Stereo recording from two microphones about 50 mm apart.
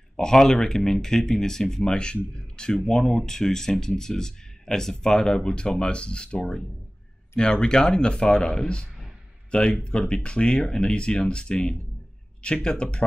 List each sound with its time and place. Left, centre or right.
0.2 s speech: centre